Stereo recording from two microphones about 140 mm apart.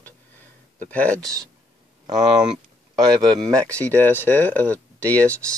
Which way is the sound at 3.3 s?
5° left (ahead or behind).